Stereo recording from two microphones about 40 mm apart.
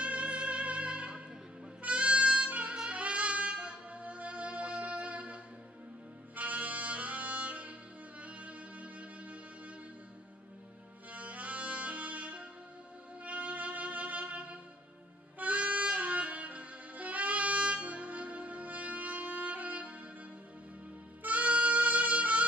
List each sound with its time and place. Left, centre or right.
0.0 s music: right
2.9 s saxophone: right
6.3 s music: right
11.1 s music: right
15.3 s saxophone: right
21.2 s music: right